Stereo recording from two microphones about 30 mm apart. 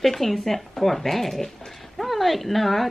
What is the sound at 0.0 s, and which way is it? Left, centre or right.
Speech, centre.